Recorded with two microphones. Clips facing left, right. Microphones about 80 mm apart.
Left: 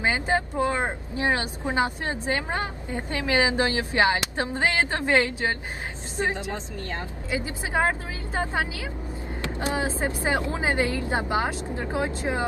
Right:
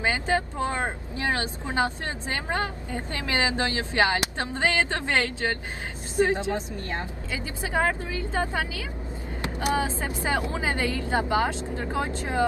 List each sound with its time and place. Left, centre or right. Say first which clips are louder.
0.0 s a woman's voice: left 1 dB; left